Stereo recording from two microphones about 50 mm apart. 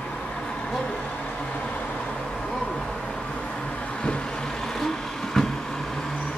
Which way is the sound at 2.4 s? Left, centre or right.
Centre.